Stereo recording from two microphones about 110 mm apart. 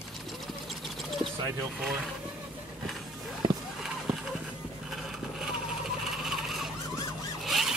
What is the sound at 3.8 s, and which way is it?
Horse, 5° right (ahead or behind).